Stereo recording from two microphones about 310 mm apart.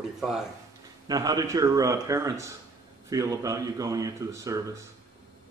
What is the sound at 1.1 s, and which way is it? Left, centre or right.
A man's voice, centre.